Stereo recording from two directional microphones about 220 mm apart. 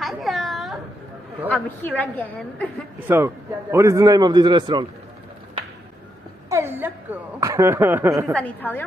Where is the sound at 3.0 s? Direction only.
10° right (ahead or behind).